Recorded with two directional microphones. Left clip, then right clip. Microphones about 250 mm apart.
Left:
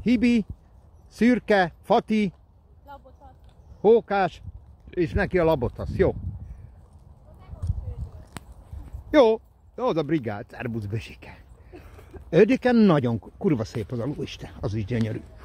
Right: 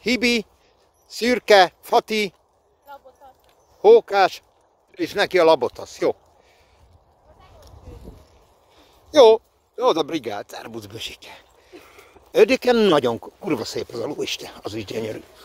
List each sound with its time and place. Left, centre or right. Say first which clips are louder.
0.0 s speech: right 3 dB; centre
3.8 s speech: right 6 dB; centre
9.1 s speech: right 6 dB; right